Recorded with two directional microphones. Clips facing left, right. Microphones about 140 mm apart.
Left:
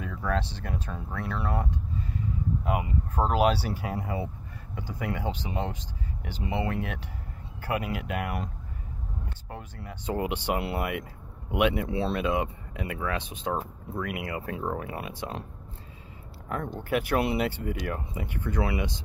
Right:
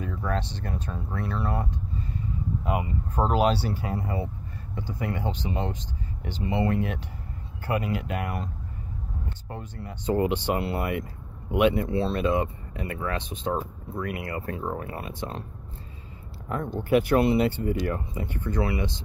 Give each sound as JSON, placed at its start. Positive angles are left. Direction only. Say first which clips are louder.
{"t": 0.2, "sound": "speech", "louder": "left 2 dB", "side_deg": 5}
{"t": 9.5, "sound": "speech", "louder": "right 3 dB", "side_deg": 5}
{"t": 16.9, "sound": "speech", "louder": "right 6 dB", "side_deg": 5}